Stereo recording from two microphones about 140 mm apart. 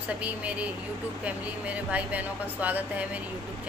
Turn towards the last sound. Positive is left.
turn(degrees=-10)  # may be behind; listen again after turning